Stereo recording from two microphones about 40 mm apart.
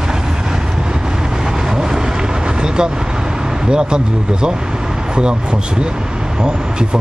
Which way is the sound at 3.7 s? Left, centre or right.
Right.